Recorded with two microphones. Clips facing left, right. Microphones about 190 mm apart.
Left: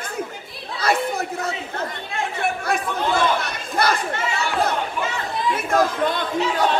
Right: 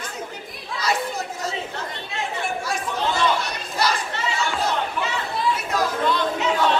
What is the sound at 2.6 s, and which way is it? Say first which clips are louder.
Chatter: left 2 dB; 60° left (ahead or behind).